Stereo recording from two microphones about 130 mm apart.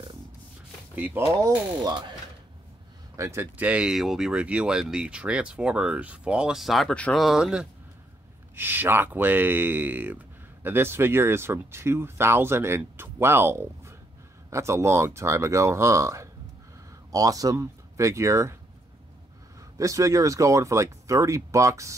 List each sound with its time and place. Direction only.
0.9 s speech: 15° right (ahead or behind)
1.9 s speech: 35° right (ahead or behind)
3.2 s speech: 20° right (ahead or behind); by 7.6 s 5° right (ahead or behind)
8.5 s speech: 15° right (ahead or behind)
19.8 s speech: 25° right (ahead or behind)